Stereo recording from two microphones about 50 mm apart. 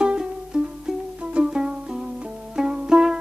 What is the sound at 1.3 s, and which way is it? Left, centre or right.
Music, centre.